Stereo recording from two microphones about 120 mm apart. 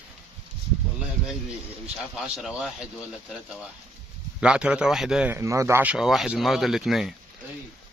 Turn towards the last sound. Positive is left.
turn(degrees=-5)  # may be behind; listen again after turning